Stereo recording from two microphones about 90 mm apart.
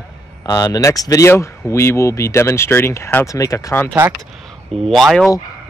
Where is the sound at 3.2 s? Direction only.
40° left (ahead or behind).